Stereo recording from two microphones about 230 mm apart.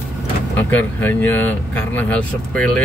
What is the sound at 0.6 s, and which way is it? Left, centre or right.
Speech, centre.